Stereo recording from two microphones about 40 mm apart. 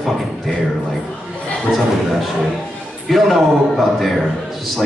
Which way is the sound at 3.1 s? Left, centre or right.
Centre.